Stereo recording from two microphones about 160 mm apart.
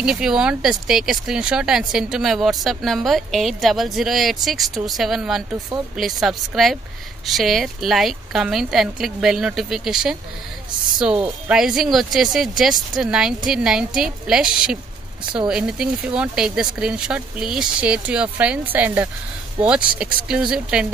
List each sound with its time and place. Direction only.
0.0 s speech: 5° right (ahead or behind)
11.4 s speech: 5° right (ahead or behind)
20.2 s speech: 5° right (ahead or behind)